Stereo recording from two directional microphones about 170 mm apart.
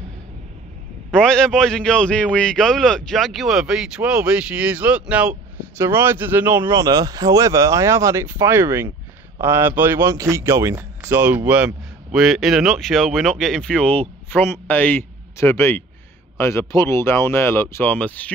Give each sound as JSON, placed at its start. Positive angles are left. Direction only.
{"t": 1.1, "sound": "speech", "side_deg": 5}